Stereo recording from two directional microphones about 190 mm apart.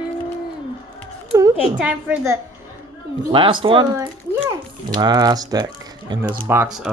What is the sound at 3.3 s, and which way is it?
A child's voice, 25° right (ahead or behind).